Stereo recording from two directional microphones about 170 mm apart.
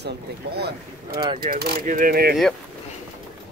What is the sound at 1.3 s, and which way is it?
Speech, 65° right (ahead or behind).